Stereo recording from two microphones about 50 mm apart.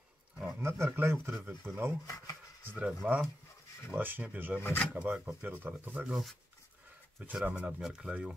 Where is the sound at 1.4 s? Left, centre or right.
Right.